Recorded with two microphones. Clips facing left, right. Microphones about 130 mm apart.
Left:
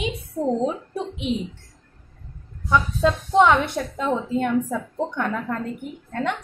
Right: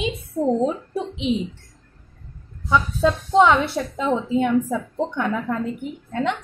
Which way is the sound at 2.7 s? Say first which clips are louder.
Right 1 dB; 5° right (ahead or behind).